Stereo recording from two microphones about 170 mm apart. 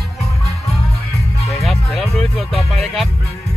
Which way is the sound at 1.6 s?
Centre (ahead or behind).